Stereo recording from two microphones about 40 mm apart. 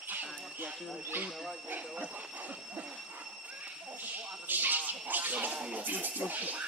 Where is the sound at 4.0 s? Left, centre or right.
Right.